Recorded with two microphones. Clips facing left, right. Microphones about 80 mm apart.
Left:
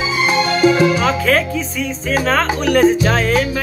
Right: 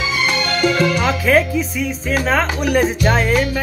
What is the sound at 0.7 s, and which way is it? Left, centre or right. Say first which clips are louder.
Music: left 4 dB; centre.